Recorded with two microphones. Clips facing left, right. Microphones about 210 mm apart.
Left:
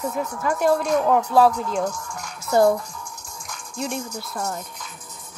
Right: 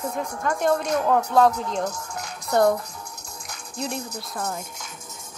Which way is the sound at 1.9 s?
40° right (ahead or behind).